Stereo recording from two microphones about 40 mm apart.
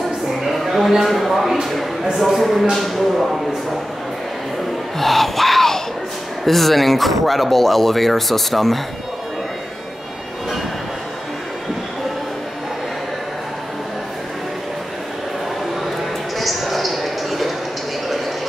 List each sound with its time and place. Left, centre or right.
0.4 s speech: centre
4.9 s a sound: centre
6.4 s speech: centre
16.3 s music: centre